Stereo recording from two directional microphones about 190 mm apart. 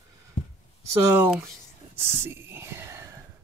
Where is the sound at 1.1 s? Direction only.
10° right (ahead or behind).